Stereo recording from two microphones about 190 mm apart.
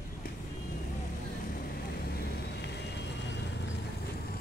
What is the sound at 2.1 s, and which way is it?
Vehicle, 60° left (ahead or behind).